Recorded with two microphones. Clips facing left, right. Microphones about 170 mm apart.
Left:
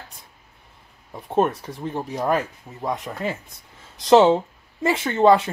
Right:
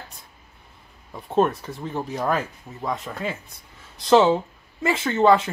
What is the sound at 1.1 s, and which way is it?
Speech, 10° left (ahead or behind).